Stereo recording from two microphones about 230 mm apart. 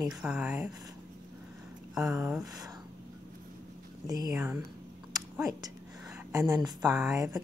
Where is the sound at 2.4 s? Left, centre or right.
Centre.